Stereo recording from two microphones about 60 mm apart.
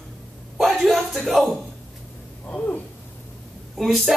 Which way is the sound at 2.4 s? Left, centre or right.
Left.